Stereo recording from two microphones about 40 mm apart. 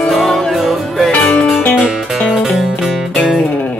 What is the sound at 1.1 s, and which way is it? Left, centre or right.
Music, left.